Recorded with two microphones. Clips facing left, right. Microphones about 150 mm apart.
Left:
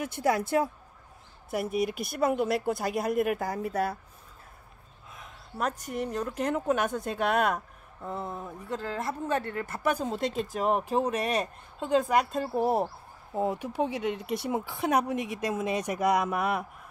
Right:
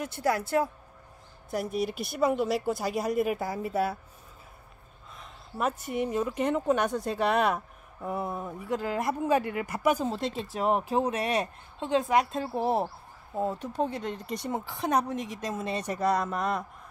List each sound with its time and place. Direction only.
0.0 s speech: 15° left (ahead or behind)
1.5 s speech: 5° left (ahead or behind)
5.1 s speech: centre (ahead or behind)
8.0 s speech: 10° right (ahead or behind)
13.3 s speech: 15° left (ahead or behind)